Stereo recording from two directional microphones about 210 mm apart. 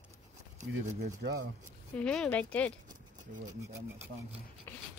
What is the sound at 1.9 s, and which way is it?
Speech, 5° left (ahead or behind).